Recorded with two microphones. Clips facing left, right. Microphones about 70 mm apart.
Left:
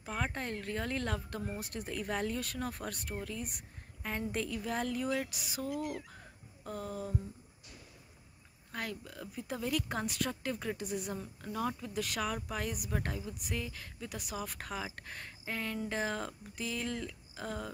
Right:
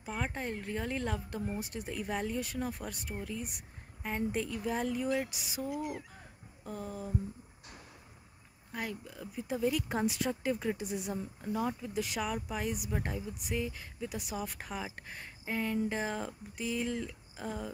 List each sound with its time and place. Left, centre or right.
0.0 s speech: centre
8.7 s speech: centre